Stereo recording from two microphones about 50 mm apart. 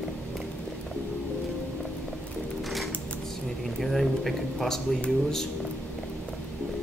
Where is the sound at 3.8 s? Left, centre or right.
Centre.